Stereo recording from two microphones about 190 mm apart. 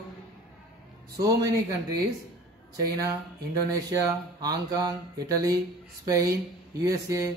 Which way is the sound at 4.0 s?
20° right (ahead or behind).